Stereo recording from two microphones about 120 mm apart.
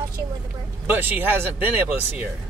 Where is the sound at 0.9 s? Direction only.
15° right (ahead or behind).